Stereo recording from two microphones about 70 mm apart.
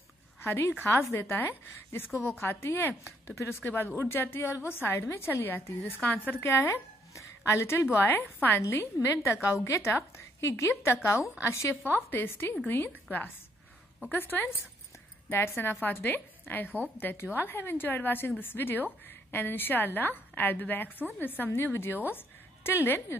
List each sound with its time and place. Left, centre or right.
0.4 s a woman's voice: left
6.4 s a woman's voice: left